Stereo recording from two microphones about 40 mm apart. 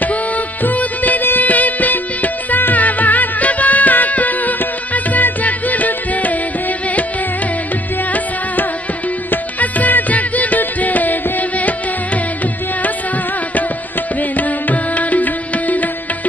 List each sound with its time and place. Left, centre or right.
0.0 s music: left
9.3 s music: left
14.3 s music: left